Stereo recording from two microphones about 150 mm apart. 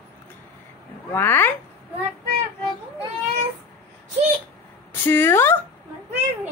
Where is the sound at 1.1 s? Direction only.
15° left (ahead or behind).